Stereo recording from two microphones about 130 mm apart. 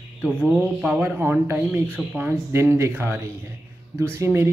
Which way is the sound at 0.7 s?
10° right (ahead or behind).